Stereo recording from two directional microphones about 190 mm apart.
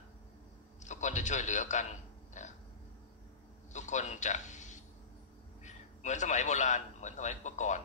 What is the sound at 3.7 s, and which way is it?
A man's voice, 40° left (ahead or behind).